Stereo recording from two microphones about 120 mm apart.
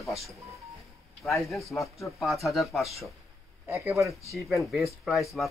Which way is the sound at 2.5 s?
Centre (ahead or behind).